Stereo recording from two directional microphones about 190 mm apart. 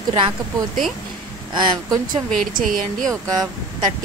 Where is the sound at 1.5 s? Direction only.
25° right (ahead or behind).